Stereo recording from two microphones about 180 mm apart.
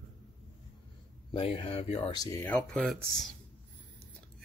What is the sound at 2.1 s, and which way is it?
Speech, 20° left (ahead or behind).